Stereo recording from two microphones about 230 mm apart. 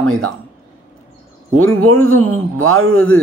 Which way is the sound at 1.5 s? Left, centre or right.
Right.